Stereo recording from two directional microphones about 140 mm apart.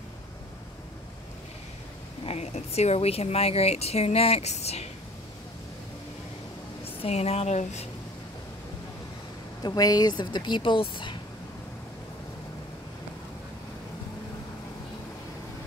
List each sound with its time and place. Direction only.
2.2 s speech: 50° left (ahead or behind)
7.0 s speech: 50° left (ahead or behind)
9.6 s speech: 30° left (ahead or behind)